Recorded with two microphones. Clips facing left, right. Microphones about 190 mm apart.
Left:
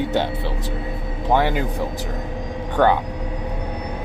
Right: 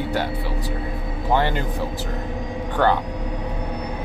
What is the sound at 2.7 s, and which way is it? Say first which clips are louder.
Speech: left 2 dB; 15° left (ahead or behind).